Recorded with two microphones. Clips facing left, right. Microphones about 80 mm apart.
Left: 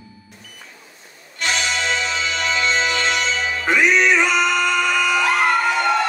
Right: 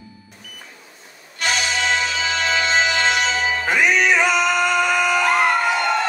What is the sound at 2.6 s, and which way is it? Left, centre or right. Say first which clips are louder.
Music: right 1 dB; right.